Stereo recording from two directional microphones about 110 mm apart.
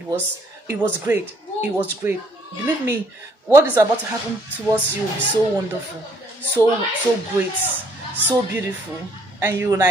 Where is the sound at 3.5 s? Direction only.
30° right (ahead or behind).